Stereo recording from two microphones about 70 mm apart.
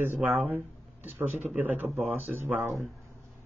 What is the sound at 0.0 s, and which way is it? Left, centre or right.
Speech, right.